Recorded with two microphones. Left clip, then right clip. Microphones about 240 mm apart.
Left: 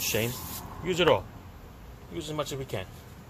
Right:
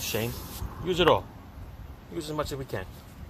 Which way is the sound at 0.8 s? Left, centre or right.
Centre.